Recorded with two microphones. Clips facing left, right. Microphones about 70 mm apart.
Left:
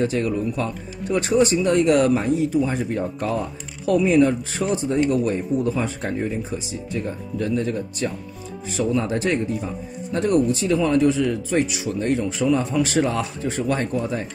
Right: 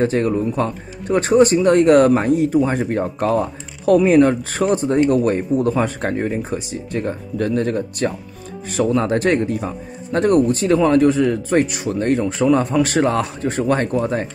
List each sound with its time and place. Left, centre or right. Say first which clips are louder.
0.0 s speech: right 4 dB; right